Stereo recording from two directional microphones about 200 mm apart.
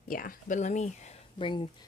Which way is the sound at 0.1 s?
45° left (ahead or behind).